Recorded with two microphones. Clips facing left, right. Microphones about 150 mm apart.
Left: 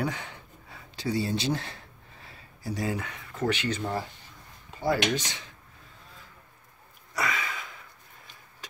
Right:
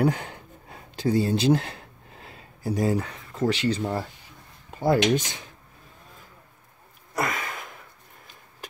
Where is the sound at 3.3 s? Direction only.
30° right (ahead or behind).